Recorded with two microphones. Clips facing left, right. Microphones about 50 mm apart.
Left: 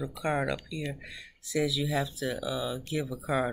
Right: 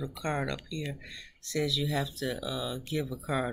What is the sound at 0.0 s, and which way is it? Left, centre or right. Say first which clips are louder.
Speech: left 3 dB; centre.